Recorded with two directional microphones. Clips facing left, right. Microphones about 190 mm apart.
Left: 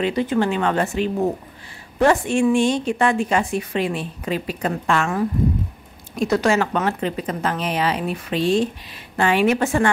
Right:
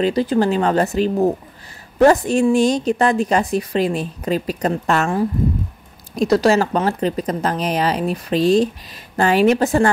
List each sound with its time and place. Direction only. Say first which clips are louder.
0.0 s a woman's voice: right 3 dB; 35° right (ahead or behind)